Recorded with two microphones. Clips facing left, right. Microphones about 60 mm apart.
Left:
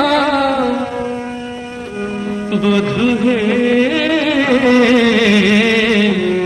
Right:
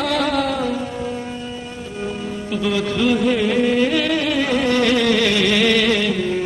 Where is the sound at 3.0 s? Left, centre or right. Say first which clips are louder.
Left 3 dB; left.